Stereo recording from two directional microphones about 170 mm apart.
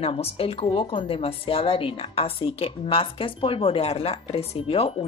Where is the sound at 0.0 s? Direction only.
35° left (ahead or behind).